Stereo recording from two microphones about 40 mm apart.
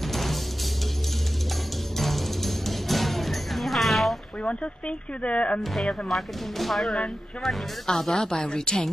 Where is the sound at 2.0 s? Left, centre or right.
Centre.